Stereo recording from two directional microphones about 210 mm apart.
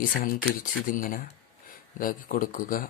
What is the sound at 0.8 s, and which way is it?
Speech, 40° left (ahead or behind).